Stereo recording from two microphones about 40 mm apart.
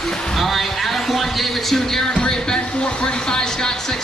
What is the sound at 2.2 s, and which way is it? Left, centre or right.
Speech, centre.